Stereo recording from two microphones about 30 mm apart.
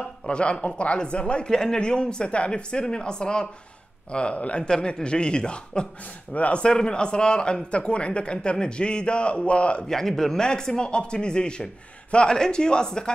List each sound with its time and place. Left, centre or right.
0.3 s a man's voice: left
0.9 s a man's voice: left
1.5 s a man's voice: centre
1.8 s a man's voice: left
2.8 s a man's voice: left
4.6 s a man's voice: left
6.3 s speech: left
6.6 s a man's voice: left
7.7 s a man's voice: left
9.8 s speech: centre
10.4 s a man's voice: left